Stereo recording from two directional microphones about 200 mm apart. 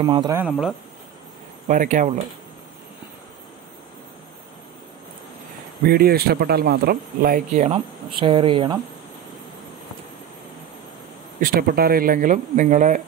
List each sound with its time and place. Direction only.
0.0 s speech: 20° right (ahead or behind)
0.5 s speech: centre (ahead or behind)
1.7 s speech: 40° right (ahead or behind)
5.9 s speech: 50° right (ahead or behind); by 8.7 s 25° right (ahead or behind)
11.3 s speech: 45° right (ahead or behind)